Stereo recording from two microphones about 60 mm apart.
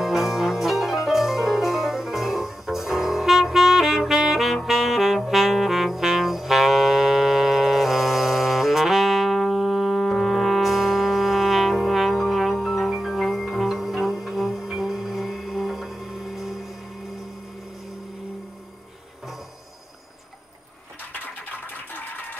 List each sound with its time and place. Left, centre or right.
0.0 s music: centre
21.1 s music: left